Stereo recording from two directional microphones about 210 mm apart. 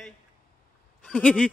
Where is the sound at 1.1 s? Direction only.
5° left (ahead or behind).